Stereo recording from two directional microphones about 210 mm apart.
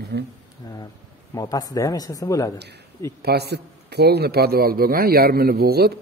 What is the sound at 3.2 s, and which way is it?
A man's voice, 50° right (ahead or behind).